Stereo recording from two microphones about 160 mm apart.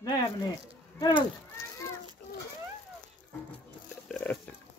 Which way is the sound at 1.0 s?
25° left (ahead or behind).